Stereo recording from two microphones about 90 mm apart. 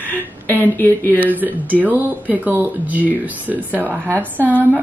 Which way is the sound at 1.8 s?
20° right (ahead or behind).